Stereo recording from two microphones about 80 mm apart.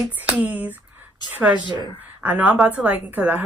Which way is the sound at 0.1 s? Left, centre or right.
Centre.